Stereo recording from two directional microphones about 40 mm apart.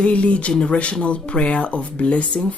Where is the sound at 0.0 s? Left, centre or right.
Left.